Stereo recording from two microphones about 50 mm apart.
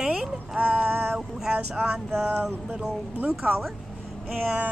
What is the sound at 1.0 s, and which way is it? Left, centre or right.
Speech, centre.